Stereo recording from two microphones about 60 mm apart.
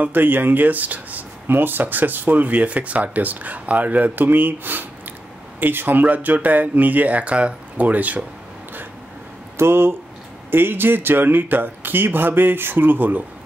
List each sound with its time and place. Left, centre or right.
0.0 s speech: right
9.6 s speech: right